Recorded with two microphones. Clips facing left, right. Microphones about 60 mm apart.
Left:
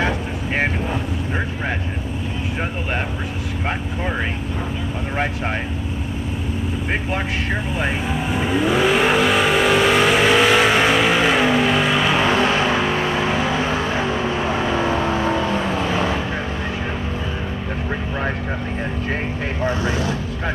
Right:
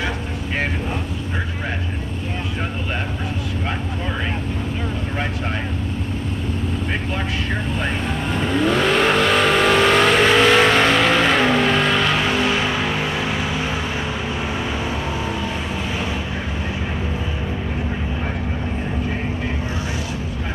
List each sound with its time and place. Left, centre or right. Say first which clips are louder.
7.8 s vehicle: left 1 dB; centre
12.2 s vehicle: left 2 dB; left